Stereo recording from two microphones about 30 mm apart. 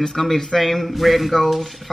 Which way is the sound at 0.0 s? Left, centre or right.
Centre.